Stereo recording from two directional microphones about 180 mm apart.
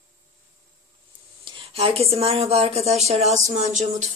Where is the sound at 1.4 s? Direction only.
30° right (ahead or behind).